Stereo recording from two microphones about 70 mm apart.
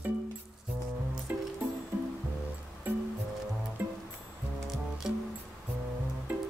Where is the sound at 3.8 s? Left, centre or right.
Right.